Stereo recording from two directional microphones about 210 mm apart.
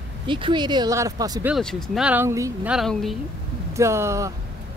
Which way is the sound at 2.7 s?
Centre (ahead or behind).